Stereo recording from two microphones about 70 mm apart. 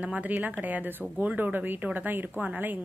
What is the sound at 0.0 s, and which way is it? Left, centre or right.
A woman's voice, right.